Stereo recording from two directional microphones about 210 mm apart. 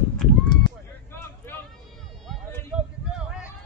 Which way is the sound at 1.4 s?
10° left (ahead or behind).